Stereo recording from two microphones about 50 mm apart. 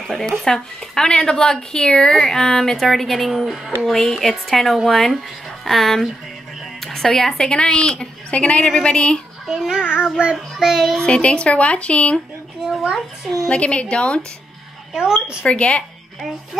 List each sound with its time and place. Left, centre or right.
0.0 s speech: centre
3.8 s a child's voice: centre
6.8 s music: centre
7.2 s a woman's voice: centre
9.5 s babbling: centre
10.3 s child singing: centre
11.1 s a woman's voice: left
12.9 s a child's voice: centre
13.5 s a woman's voice: left
15.0 s a woman's voice: centre
15.4 s a woman's voice: left